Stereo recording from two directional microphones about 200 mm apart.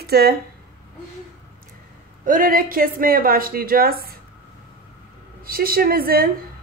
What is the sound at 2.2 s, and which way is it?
Speech, 45° right (ahead or behind).